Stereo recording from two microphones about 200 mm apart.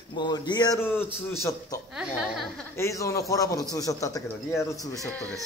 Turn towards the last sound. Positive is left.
turn(degrees=5)  # may be behind; listen again after turning